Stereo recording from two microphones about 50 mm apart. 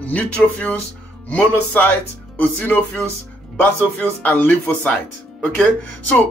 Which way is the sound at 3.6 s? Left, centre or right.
Left.